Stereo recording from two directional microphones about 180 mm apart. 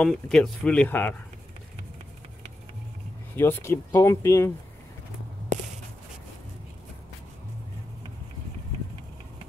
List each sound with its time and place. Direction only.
0.0 s speech: 5° left (ahead or behind)
3.3 s speech: 15° left (ahead or behind)